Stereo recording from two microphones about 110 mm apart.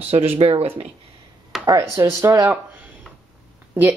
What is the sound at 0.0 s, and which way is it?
Speech, 65° right (ahead or behind).